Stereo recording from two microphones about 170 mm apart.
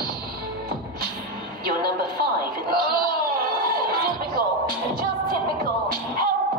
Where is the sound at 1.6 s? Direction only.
60° right (ahead or behind).